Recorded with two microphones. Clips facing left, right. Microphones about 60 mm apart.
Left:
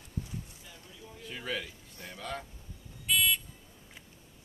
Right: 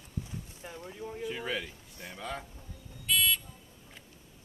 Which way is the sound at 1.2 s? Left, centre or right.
Centre.